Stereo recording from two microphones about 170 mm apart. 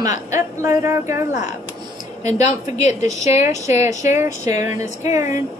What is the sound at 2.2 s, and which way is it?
A woman's voice, 40° left (ahead or behind).